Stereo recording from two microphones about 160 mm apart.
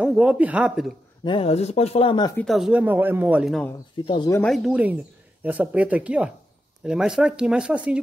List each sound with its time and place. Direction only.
0.0 s speech: 5° right (ahead or behind)
1.2 s speech: 35° left (ahead or behind)
2.3 s speech: centre (ahead or behind)
4.0 s speech: 35° left (ahead or behind)
4.5 s speech: 5° right (ahead or behind)